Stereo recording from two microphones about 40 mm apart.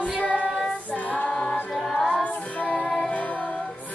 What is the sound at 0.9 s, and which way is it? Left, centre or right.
Female singing, left.